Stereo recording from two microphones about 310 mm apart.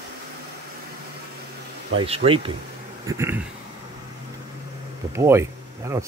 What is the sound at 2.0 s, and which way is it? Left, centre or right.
Speech, centre.